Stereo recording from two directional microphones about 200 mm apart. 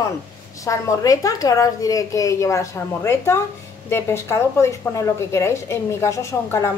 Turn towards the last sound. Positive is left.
turn(degrees=15)  # may be behind; listen again after turning